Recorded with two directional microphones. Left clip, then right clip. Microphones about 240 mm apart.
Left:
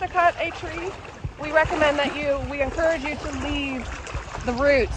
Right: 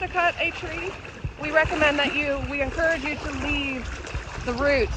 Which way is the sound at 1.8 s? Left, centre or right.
Left.